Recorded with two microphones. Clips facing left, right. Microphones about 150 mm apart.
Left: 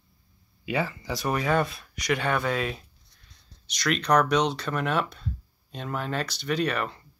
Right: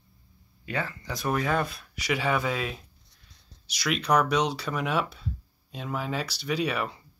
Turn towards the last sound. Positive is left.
turn(degrees=-10)  # may be behind; listen again after turning